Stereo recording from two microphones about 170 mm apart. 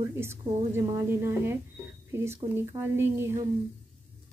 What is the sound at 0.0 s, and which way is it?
Speech, 15° right (ahead or behind).